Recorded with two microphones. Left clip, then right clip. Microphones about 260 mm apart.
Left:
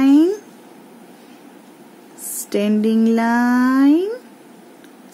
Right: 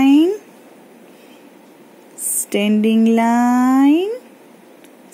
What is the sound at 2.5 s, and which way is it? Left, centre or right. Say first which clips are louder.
Speech: right 1 dB; centre.